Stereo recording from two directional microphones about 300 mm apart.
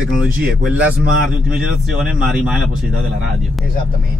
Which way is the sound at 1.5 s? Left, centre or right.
Centre.